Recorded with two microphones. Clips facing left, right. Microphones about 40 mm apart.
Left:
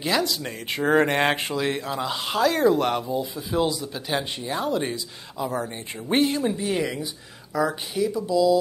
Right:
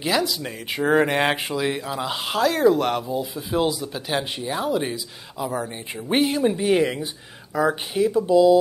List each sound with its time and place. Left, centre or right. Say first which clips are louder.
0.0 s speech: right 1 dB; centre
6.5 s speech: right 6 dB; right